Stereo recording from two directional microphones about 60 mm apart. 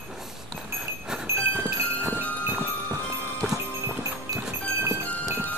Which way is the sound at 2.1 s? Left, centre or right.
Left.